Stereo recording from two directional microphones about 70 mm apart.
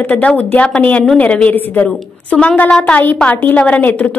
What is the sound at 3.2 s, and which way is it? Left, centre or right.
Speech, left.